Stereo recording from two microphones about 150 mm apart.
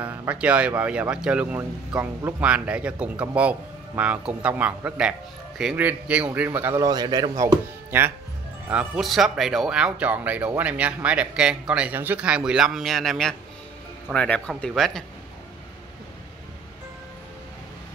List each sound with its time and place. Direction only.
0.0 s a man's voice: 10° right (ahead or behind)
6.8 s speech: 25° right (ahead or behind)
8.6 s a man's voice: 5° right (ahead or behind)